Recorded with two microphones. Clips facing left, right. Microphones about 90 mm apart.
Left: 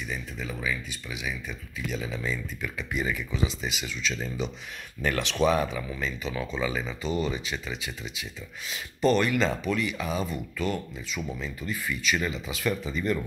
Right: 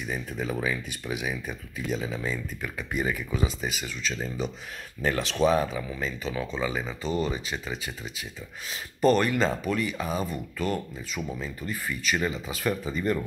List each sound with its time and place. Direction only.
0.1 s speech: 40° right (ahead or behind)